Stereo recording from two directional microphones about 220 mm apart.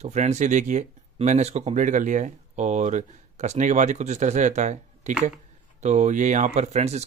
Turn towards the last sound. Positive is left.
turn(degrees=-30)  # may be behind; listen again after turning